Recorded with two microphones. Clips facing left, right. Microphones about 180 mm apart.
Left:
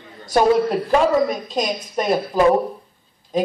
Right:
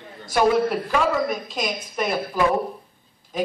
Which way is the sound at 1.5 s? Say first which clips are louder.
Left 5 dB; 40° left (ahead or behind).